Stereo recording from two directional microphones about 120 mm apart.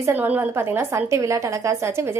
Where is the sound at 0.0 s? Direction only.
15° right (ahead or behind).